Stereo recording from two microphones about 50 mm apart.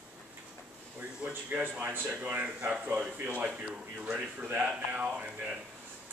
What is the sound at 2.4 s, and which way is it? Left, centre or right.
Speech, right.